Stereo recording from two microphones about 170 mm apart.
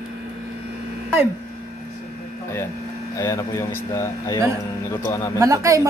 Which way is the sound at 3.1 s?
20° left (ahead or behind).